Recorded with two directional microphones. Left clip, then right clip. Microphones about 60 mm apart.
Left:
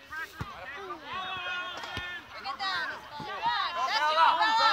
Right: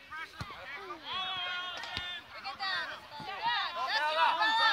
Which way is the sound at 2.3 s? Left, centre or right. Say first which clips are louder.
Left 4 dB; centre.